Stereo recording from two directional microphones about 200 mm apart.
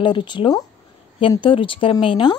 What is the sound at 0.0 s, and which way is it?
A woman's voice, 25° left (ahead or behind).